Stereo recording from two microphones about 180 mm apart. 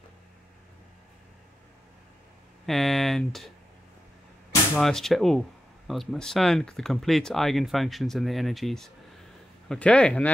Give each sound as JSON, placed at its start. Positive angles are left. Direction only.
{"t": 2.6, "sound": "speech", "side_deg": 0}
{"t": 4.7, "sound": "speech", "side_deg": 0}